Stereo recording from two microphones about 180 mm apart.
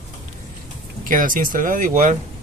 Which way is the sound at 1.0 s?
50° right (ahead or behind).